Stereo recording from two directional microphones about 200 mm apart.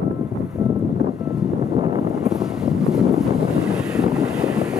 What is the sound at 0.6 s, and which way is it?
Boat, 20° right (ahead or behind).